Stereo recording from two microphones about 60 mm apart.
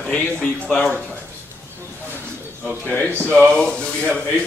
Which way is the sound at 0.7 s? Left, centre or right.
Centre.